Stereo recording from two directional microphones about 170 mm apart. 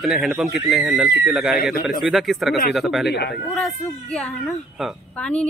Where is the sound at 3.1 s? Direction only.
80° left.